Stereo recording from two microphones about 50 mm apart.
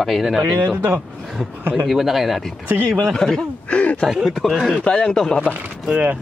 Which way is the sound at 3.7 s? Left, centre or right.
Left.